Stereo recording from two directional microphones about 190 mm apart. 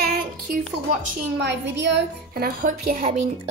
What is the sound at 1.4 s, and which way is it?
A woman's voice, 65° right (ahead or behind).